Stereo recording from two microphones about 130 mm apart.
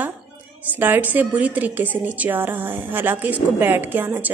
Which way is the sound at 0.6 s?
15° right (ahead or behind).